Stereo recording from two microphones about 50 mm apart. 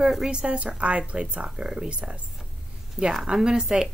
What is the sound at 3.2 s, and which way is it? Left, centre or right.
Speech, centre.